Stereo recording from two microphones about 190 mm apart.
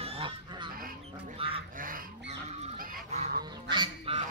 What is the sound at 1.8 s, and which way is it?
Goose, 45° right (ahead or behind).